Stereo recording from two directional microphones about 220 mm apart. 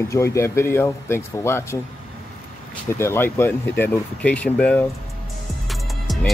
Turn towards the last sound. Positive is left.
turn(degrees=0)  # may be behind; listen again after turning